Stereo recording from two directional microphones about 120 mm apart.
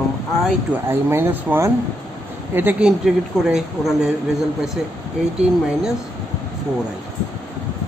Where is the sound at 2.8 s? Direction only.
5° right (ahead or behind).